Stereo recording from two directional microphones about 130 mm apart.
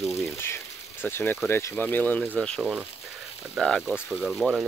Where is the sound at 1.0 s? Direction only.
15° left (ahead or behind).